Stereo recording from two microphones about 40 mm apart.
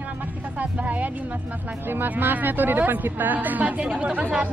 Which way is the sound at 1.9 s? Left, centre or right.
Right.